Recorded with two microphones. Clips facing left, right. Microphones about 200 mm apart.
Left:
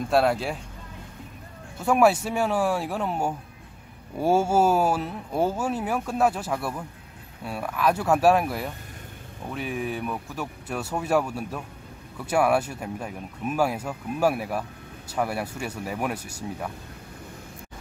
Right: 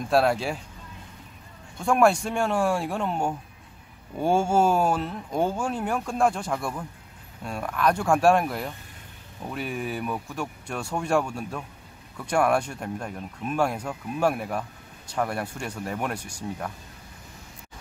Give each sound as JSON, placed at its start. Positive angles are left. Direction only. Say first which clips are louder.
{"t": 0.1, "sound": "speech", "louder": "even", "side_deg": 0}
{"t": 1.8, "sound": "speech", "louder": "left 1 dB", "side_deg": 5}